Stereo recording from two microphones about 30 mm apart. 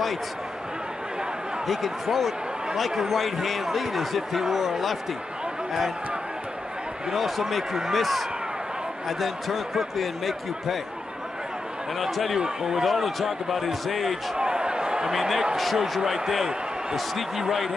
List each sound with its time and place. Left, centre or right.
1.7 s speech: centre
7.2 s speech: centre
12.0 s speech: centre
14.3 s a sound: right
15.1 s speech: centre